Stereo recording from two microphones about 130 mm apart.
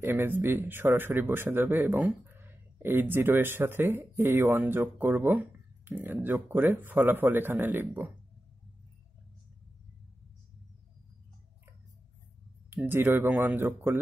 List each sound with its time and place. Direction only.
0.0 s speech: 15° right (ahead or behind)
12.8 s speech: 15° right (ahead or behind)